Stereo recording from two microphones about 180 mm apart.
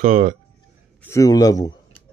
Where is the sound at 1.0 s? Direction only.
15° left (ahead or behind).